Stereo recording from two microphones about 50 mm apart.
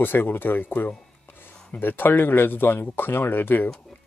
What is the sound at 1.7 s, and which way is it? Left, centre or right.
Speech, left.